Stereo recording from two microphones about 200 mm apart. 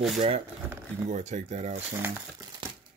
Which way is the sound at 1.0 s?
35° right (ahead or behind).